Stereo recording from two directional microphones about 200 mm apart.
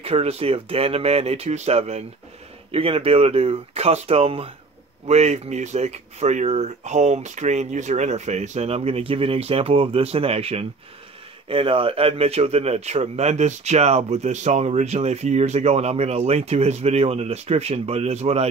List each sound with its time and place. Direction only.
0.0 s speech: 30° right (ahead or behind)